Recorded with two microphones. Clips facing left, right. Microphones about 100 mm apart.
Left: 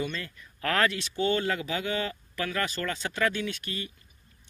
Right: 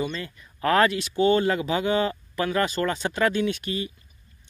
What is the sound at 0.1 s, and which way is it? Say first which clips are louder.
Speech: right 4 dB; 20° right (ahead or behind).